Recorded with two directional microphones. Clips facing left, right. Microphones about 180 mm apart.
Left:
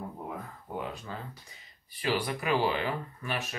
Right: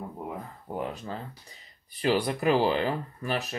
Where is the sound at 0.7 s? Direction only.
35° right (ahead or behind).